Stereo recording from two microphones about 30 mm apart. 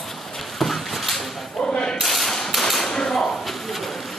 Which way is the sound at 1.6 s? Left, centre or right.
Left.